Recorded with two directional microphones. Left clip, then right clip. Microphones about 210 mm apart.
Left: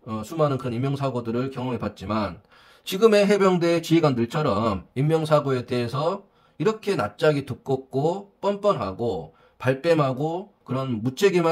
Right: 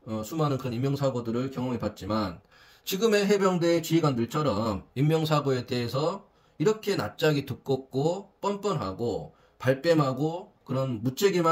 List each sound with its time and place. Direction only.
0.2 s speech: 35° left (ahead or behind)